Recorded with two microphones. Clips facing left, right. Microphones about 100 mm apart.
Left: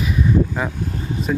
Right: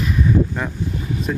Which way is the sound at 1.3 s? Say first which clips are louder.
Left 3 dB; 5° left (ahead or behind).